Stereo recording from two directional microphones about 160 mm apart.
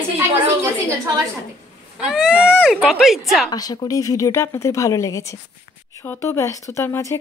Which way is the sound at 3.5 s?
25° left (ahead or behind).